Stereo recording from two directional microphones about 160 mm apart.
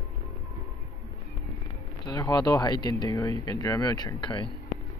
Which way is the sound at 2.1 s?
25° left (ahead or behind).